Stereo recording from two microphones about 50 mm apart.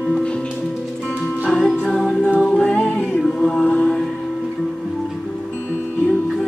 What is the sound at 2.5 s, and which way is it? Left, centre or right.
Music, centre.